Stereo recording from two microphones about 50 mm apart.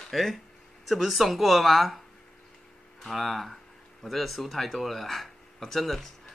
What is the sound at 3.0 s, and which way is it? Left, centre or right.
Speech, centre.